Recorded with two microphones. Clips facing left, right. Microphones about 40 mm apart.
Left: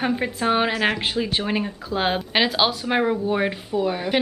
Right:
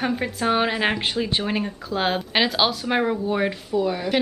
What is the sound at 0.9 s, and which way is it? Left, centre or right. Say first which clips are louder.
Speech: even; centre.